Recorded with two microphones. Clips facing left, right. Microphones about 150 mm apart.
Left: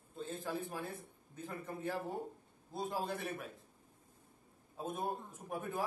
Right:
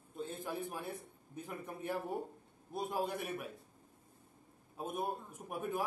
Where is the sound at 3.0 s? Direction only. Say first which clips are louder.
Right 1 dB; 15° right (ahead or behind).